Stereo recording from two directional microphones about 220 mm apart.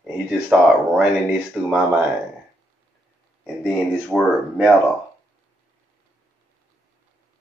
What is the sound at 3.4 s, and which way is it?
Speech, centre (ahead or behind).